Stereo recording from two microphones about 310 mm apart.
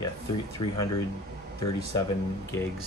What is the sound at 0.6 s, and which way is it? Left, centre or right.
Speech, left.